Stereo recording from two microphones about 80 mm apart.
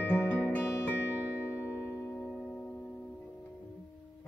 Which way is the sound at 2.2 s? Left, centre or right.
Centre.